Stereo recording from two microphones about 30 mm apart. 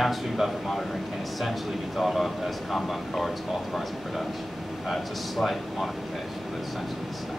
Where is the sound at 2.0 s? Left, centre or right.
Centre.